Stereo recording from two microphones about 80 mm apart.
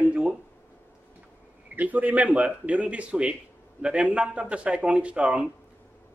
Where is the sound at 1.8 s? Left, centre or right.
Centre.